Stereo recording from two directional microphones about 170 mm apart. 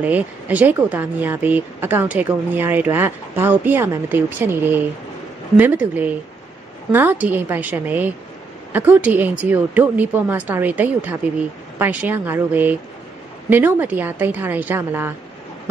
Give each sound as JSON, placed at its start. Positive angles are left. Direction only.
{"t": 0.0, "sound": "speech", "side_deg": -10}